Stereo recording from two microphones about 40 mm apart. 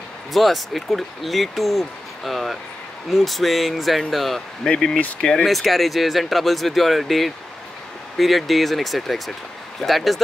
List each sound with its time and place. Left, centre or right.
0.3 s speech: centre
4.6 s speech: centre
5.4 s speech: centre